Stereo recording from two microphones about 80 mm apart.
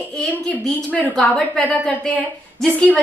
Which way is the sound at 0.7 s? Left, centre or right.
Centre.